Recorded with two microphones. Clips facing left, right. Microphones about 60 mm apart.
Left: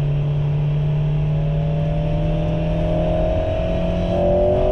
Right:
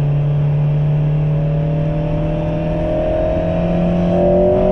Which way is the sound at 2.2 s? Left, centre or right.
Right.